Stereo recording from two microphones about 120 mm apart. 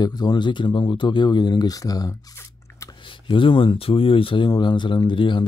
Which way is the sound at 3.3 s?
45° left (ahead or behind).